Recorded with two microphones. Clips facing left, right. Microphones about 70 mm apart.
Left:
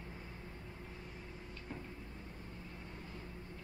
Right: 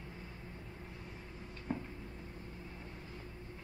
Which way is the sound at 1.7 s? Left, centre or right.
Right.